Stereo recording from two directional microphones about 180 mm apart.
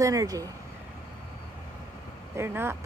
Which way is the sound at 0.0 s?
20° right (ahead or behind).